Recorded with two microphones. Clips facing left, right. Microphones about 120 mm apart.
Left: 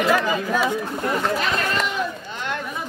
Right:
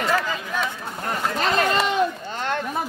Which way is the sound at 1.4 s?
35° right (ahead or behind).